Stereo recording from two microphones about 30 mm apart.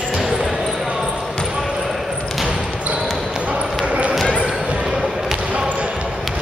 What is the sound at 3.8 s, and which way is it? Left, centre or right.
Basketball bounce, right.